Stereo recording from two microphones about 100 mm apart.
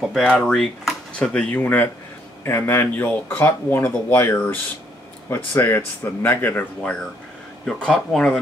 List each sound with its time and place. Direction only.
0.1 s speech: 5° left (ahead or behind)